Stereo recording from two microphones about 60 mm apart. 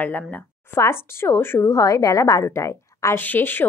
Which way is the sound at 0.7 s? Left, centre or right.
Left.